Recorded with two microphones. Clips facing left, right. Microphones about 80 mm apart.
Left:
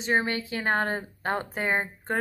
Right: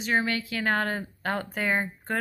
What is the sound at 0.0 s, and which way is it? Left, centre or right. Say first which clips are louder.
Speech: even; left.